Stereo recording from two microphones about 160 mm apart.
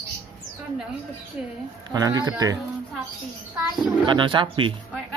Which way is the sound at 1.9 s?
25° right (ahead or behind).